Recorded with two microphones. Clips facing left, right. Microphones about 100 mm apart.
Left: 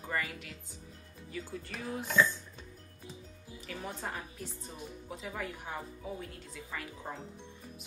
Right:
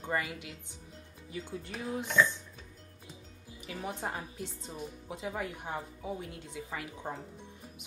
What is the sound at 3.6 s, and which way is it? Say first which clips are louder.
A woman's voice: right 3 dB; 20° right (ahead or behind).